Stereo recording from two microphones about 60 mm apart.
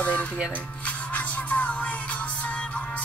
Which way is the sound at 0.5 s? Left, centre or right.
Left.